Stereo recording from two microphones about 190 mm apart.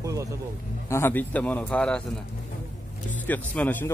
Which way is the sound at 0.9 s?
10° left (ahead or behind).